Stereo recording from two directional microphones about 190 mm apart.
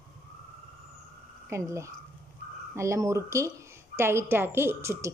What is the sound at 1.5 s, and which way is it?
A woman's voice, 15° right (ahead or behind).